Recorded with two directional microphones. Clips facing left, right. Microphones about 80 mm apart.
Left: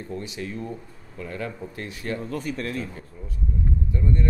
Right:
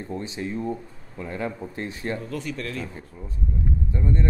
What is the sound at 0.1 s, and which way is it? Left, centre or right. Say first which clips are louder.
Speech: right 3 dB; right.